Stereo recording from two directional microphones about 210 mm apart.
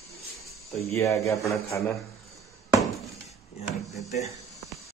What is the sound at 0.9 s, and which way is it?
Speech, 15° left (ahead or behind).